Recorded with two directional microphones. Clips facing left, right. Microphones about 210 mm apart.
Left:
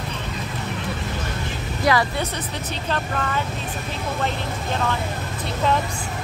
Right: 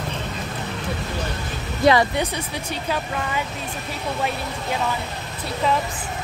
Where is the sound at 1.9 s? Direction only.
20° right (ahead or behind).